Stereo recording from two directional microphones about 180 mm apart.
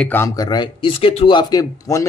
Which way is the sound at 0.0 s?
10° left (ahead or behind).